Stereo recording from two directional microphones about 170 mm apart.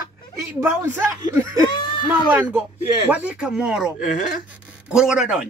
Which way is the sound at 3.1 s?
5° right (ahead or behind).